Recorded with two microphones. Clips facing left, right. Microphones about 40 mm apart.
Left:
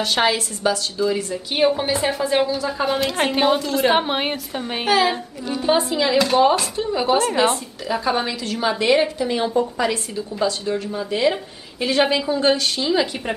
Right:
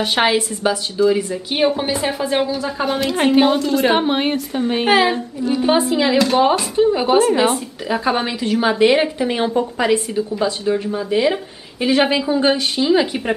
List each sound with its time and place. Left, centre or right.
0.0 s a woman's voice: right; by 4.8 s centre
4.8 s a woman's voice: right
5.5 s a woman's voice: centre
8.0 s a woman's voice: right